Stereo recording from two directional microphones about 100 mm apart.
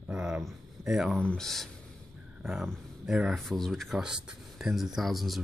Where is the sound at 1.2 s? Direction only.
10° left (ahead or behind).